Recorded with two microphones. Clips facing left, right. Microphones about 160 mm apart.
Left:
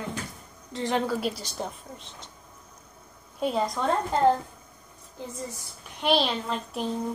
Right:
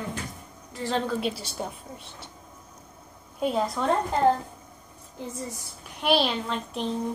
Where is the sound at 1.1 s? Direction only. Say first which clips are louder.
Even; centre (ahead or behind).